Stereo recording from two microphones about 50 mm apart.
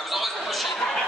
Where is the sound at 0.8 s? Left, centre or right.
Centre.